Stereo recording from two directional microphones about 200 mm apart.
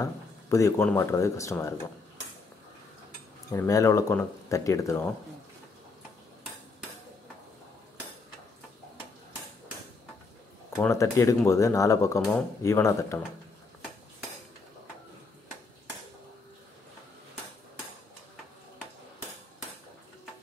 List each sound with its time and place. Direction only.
0.0 s speech: 15° left (ahead or behind)
3.5 s speech: 15° left (ahead or behind)
10.8 s speech: 15° left (ahead or behind)